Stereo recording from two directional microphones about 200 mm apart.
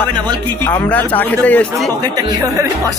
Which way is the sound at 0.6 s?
5° left (ahead or behind).